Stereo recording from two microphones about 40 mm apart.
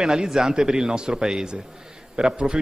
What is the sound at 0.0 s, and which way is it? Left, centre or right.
A man's voice, centre.